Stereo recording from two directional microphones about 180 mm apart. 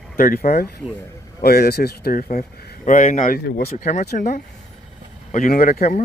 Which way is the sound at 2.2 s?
40° left (ahead or behind).